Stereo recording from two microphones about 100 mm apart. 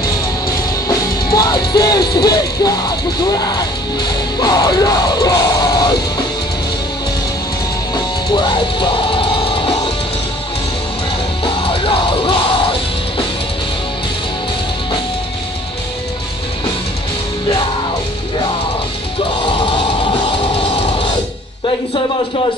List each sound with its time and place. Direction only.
0.8 s music: 40° left (ahead or behind)
3.2 s speech: 40° left (ahead or behind)
4.4 s music: 40° left (ahead or behind)
7.9 s music: 50° left (ahead or behind)